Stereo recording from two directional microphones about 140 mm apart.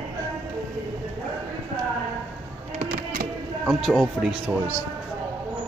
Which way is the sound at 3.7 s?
Centre (ahead or behind).